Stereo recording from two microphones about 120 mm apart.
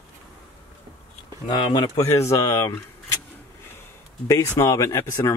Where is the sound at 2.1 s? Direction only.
25° left (ahead or behind).